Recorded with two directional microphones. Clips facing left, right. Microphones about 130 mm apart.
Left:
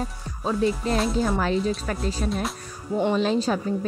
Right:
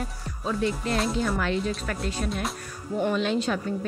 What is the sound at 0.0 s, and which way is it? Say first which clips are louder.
Music: left 3 dB; 35° left (ahead or behind).